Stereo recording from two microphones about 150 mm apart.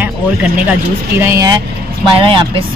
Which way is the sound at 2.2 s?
35° right (ahead or behind).